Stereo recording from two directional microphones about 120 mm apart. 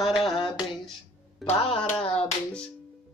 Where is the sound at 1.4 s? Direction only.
55° left (ahead or behind).